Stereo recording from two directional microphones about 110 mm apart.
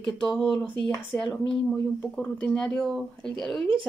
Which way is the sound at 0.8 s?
5° left (ahead or behind).